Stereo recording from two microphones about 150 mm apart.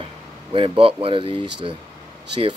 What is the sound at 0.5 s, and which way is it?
Speech, 35° right (ahead or behind).